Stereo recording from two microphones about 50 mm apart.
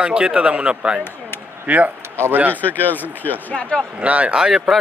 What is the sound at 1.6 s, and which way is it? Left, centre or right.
Speech, right.